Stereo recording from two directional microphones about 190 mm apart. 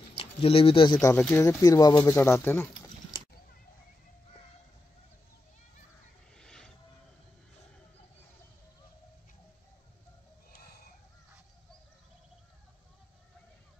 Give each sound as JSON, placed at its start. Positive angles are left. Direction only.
{"t": 0.1, "sound": "speech", "side_deg": 30}
{"t": 1.1, "sound": "speech", "side_deg": 15}
{"t": 6.3, "sound": "vehicle", "side_deg": 5}
{"t": 10.5, "sound": "a sound", "side_deg": 55}